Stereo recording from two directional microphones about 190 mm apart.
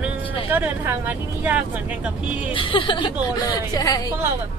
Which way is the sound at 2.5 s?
25° left (ahead or behind).